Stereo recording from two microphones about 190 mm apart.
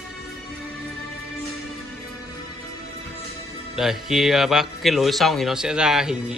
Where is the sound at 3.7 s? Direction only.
Centre (ahead or behind).